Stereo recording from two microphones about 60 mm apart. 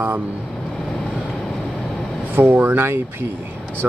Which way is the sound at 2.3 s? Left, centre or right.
Right.